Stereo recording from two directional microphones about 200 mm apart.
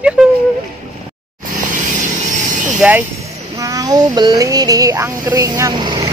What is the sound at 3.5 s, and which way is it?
Child singing, 15° right (ahead or behind).